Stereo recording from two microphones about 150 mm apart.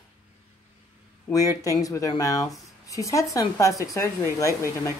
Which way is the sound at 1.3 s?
20° left (ahead or behind).